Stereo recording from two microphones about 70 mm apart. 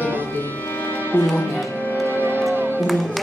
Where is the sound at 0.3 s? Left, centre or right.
Left.